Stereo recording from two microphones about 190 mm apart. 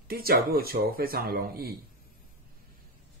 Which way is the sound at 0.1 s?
50° right (ahead or behind).